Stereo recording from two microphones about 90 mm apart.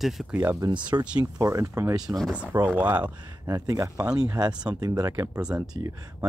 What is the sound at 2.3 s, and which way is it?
Speech, 15° right (ahead or behind).